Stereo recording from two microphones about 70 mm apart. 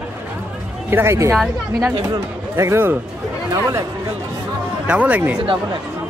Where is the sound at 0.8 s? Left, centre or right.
Right.